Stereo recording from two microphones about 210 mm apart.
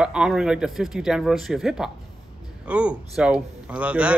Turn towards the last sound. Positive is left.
turn(degrees=-5)  # may be behind; listen again after turning